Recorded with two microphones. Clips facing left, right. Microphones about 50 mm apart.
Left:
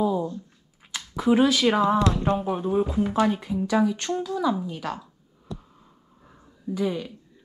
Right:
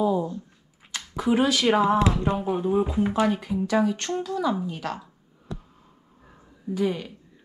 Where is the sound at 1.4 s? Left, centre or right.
Right.